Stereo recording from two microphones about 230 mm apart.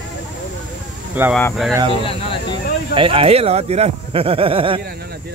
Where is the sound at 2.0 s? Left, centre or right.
Left.